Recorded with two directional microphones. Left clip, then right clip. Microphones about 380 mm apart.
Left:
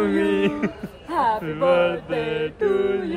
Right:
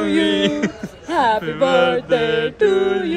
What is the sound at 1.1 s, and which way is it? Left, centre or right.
Speech, right.